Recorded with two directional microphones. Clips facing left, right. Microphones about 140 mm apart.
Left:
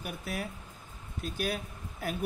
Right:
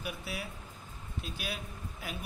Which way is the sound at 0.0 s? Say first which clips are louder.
Left 3 dB; 45° left (ahead or behind).